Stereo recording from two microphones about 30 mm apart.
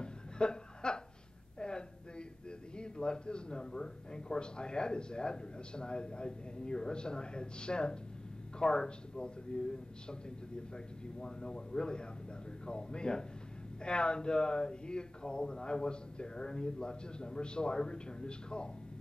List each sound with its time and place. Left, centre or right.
0.0 s chuckle: left
1.6 s a sound: left
2.7 s a man's voice: left
11.1 s a man's voice: left